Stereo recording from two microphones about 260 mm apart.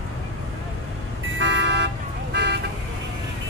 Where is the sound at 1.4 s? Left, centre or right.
Right.